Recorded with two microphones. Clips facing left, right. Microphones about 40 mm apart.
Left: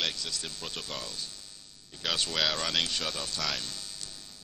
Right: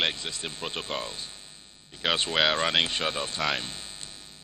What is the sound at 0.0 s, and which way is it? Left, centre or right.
A man's voice, right.